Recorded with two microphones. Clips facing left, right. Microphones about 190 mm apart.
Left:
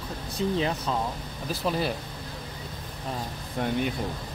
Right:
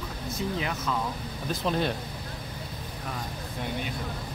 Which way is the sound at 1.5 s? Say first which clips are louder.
Even; 5° left (ahead or behind).